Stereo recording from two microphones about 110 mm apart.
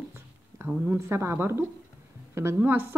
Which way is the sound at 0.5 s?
10° right (ahead or behind).